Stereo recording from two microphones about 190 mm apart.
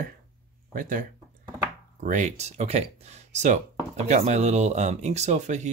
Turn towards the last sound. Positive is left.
turn(degrees=-40)  # may be behind; listen again after turning